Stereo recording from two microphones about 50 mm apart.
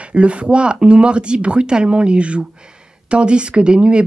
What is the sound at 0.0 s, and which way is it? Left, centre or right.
Speech, right.